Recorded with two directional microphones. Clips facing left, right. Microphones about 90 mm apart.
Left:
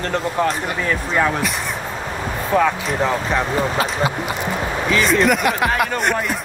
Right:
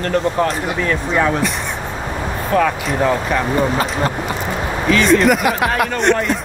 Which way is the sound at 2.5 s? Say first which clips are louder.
Right 1 dB; 20° left (ahead or behind).